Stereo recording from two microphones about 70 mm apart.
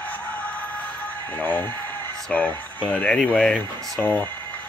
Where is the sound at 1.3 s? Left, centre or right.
Left.